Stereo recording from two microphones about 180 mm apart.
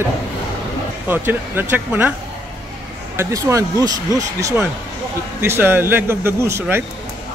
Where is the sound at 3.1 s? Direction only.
15° right (ahead or behind).